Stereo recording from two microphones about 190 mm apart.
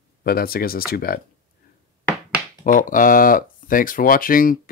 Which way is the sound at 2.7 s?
45° left (ahead or behind).